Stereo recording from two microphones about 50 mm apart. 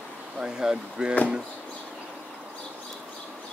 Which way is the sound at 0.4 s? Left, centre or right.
Centre.